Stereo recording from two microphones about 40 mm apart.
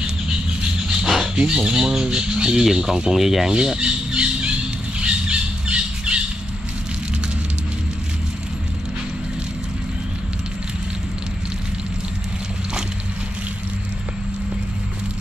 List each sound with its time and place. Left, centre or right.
1.0 s dog: centre
1.5 s speech: centre
2.6 s speech: centre
3.4 s squawk: centre